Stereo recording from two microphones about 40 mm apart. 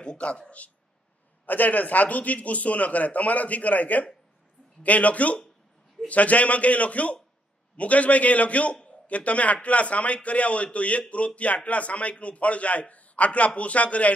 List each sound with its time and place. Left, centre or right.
0.0 s speech: left
1.4 s a man's voice: left